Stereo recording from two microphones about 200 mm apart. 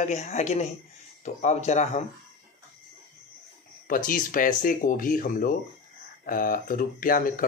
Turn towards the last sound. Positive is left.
turn(degrees=45)  # may be behind; listen again after turning